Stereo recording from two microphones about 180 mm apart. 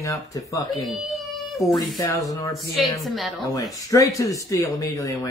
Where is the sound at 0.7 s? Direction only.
Centre (ahead or behind).